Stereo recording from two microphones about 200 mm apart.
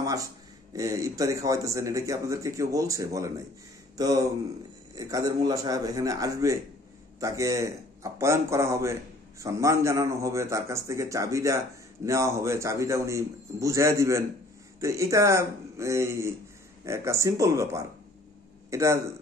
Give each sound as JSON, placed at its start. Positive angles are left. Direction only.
{"t": 0.0, "sound": "a man's voice", "side_deg": -15}